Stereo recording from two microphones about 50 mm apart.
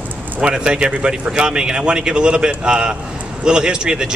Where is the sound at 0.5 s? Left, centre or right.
Centre.